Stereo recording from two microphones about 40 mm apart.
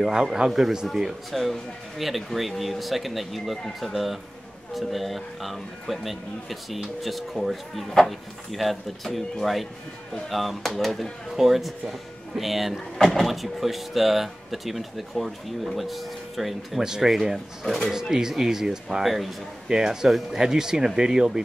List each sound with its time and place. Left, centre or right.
0.0 s speech: centre
1.3 s speech: centre
11.3 s speech: centre
12.7 s speech: centre
13.3 s speech: centre
16.8 s speech: centre
19.0 s speech: centre
19.7 s speech: centre